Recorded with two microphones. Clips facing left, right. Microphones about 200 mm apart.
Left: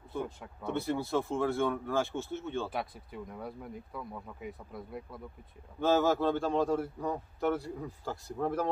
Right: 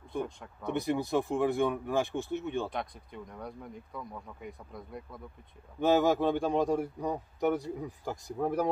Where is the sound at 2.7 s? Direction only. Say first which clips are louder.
Even; 5° left (ahead or behind).